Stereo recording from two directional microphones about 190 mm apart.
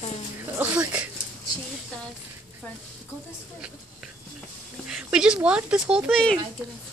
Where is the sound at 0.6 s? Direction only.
5° right (ahead or behind).